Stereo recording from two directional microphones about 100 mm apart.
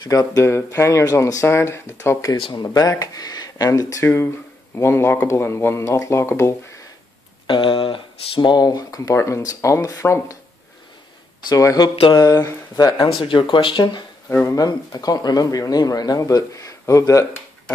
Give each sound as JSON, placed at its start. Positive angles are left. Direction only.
{"t": 0.0, "sound": "speech", "side_deg": 40}
{"t": 0.4, "sound": "speech", "side_deg": 30}
{"t": 2.5, "sound": "speech", "side_deg": 40}
{"t": 7.4, "sound": "speech", "side_deg": 60}
{"t": 11.4, "sound": "speech", "side_deg": 35}
{"t": 11.9, "sound": "speech", "side_deg": 60}
{"t": 12.2, "sound": "speech", "side_deg": 40}
{"t": 13.2, "sound": "speech", "side_deg": 60}
{"t": 14.4, "sound": "speech", "side_deg": 35}